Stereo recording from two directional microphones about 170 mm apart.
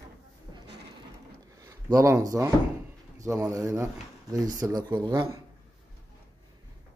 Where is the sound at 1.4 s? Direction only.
20° right (ahead or behind).